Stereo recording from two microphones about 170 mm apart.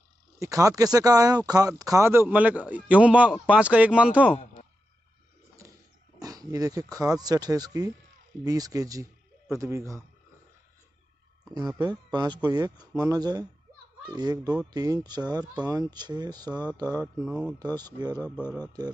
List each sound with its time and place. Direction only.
0.4 s speech: 20° right (ahead or behind)
6.2 s speech: 20° right (ahead or behind)
11.5 s speech: 20° right (ahead or behind)
17.2 s speech: 5° right (ahead or behind)
17.6 s speech: 25° right (ahead or behind)
18.1 s speech: 10° left (ahead or behind)